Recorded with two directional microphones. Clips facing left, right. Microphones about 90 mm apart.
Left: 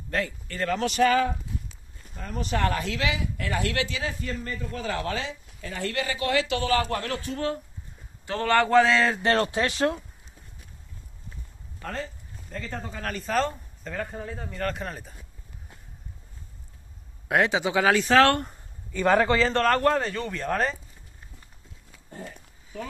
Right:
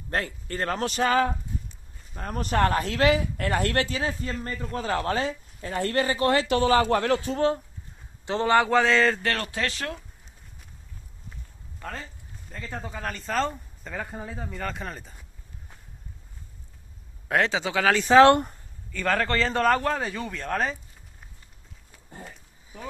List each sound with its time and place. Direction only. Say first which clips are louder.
0.1 s speech: even; 40° right (ahead or behind)
2.1 s a man's voice: right 4 dB; 50° right (ahead or behind); by 8.6 s 20° right (ahead or behind)
8.6 s a man's voice: left 1 dB; centre (ahead or behind)
9.2 s speech: left 5 dB; 20° left (ahead or behind)
11.8 s a man's voice: left 3 dB; centre (ahead or behind)
17.3 s speech: left 1 dB; 15° left (ahead or behind)
18.1 s a man's voice: right 5 dB; 20° right (ahead or behind)
18.9 s a man's voice: left 5 dB; 15° left (ahead or behind)
19.3 s a man's voice: even; centre (ahead or behind)